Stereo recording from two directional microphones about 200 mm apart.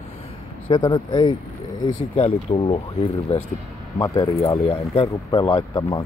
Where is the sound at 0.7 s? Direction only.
20° left (ahead or behind).